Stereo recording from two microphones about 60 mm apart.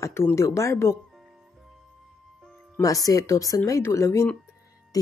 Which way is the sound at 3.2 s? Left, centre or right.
Left.